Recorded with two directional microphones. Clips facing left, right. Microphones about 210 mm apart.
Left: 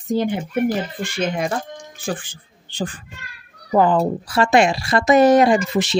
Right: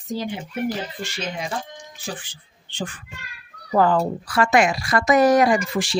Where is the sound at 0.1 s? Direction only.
55° left (ahead or behind).